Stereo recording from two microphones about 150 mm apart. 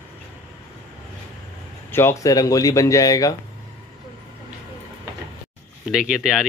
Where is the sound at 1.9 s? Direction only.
15° left (ahead or behind).